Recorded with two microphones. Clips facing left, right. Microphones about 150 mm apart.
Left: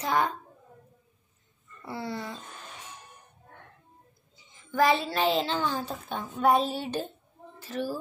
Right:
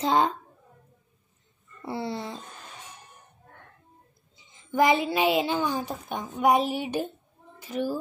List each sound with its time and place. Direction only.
0.0 s speech: 25° right (ahead or behind)
1.9 s speech: 25° right (ahead or behind)
4.4 s a woman's voice: 20° right (ahead or behind)